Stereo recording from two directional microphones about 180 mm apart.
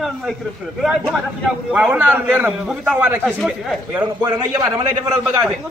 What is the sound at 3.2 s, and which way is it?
Speech, 5° left (ahead or behind).